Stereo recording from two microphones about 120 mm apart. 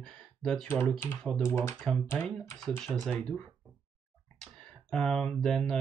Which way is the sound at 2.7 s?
5° left (ahead or behind).